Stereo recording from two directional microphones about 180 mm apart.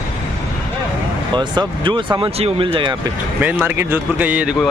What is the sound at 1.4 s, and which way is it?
Speech, 25° right (ahead or behind).